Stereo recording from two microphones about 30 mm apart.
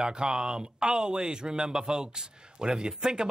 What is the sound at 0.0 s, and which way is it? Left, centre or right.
Speech, right.